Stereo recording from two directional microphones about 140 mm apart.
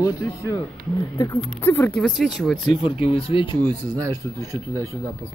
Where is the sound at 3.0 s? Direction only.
40° left (ahead or behind).